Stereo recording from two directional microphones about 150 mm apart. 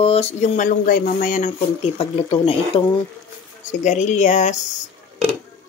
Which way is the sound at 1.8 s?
40° left (ahead or behind).